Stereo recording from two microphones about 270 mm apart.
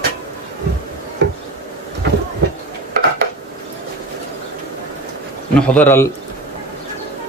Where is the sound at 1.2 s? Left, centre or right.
Right.